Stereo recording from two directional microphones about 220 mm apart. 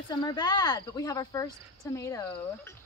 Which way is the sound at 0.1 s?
20° left (ahead or behind).